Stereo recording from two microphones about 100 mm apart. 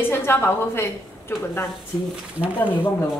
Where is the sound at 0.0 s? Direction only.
25° left (ahead or behind).